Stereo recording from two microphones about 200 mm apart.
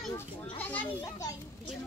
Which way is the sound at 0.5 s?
10° left (ahead or behind).